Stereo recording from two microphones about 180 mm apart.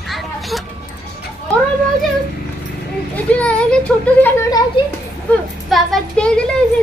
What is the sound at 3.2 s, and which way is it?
A woman's voice, 5° left (ahead or behind).